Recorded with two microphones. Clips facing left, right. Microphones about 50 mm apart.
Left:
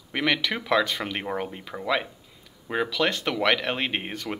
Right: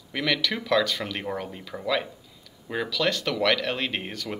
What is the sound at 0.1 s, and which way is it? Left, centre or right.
Speech, left.